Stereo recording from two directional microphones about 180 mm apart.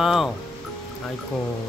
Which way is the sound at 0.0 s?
Centre (ahead or behind).